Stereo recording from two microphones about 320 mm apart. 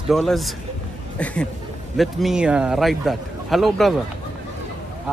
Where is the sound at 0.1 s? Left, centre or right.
Centre.